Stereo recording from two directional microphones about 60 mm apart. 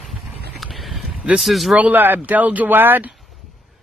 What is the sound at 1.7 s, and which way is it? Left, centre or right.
Speech, right.